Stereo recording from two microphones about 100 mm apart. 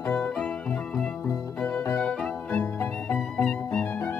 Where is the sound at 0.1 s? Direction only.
20° left (ahead or behind).